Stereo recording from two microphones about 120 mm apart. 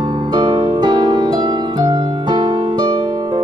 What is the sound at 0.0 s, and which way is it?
Music, 40° right (ahead or behind).